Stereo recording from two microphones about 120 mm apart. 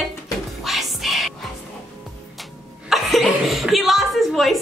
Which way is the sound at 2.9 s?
Centre (ahead or behind).